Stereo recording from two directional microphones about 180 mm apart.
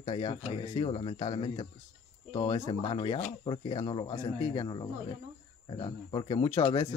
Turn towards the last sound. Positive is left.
turn(degrees=35)  # may be behind; listen again after turning